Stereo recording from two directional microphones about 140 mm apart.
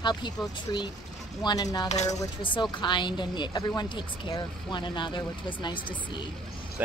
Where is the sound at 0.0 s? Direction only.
35° left (ahead or behind).